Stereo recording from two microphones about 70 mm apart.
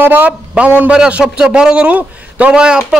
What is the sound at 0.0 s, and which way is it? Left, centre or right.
Speech, right.